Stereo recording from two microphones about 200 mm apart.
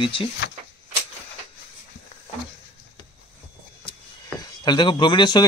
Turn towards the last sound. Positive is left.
turn(degrees=20)  # may be behind; listen again after turning